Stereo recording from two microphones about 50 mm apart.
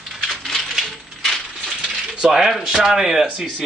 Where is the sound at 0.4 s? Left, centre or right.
Centre.